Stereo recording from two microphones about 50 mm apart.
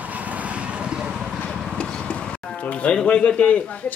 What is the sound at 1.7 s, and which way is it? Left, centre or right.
Livestock, left.